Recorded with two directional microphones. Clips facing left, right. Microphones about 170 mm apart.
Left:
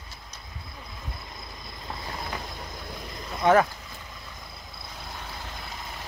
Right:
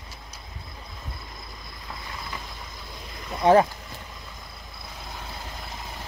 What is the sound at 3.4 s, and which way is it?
Speech, 30° right (ahead or behind).